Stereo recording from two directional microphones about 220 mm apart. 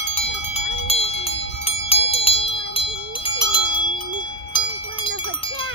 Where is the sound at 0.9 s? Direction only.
25° left (ahead or behind).